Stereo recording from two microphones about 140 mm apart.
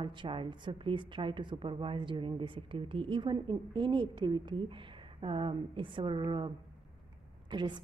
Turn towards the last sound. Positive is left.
turn(degrees=-35)  # may be behind; listen again after turning